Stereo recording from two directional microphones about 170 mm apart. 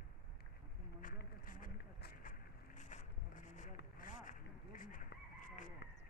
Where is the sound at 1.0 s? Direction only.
55° left (ahead or behind).